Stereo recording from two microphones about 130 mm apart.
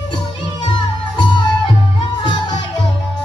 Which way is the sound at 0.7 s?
35° left (ahead or behind).